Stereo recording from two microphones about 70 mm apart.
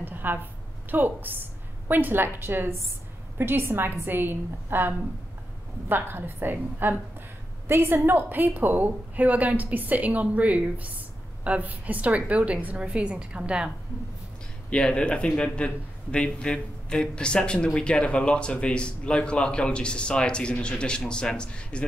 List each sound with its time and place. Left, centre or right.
0.0 s a sound: right
1.9 s a woman's voice: right
14.7 s a man's voice: centre